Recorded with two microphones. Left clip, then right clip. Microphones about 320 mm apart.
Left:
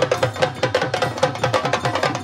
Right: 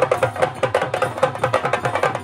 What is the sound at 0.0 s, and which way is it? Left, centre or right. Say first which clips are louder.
Music: right 1 dB; centre.